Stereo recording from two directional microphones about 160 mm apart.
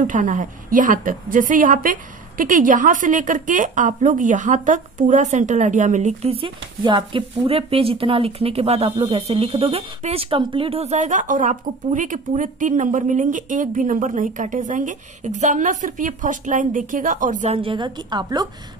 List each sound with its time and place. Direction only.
0.0 s a woman's voice: 55° right (ahead or behind)
17.6 s a woman's voice: 30° right (ahead or behind)